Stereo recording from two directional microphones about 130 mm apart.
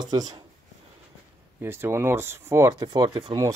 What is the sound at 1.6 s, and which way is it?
Speech, 20° right (ahead or behind).